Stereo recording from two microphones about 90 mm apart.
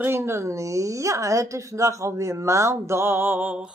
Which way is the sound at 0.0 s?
25° right (ahead or behind).